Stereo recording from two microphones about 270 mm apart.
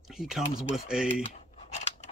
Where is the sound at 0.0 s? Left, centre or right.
Centre.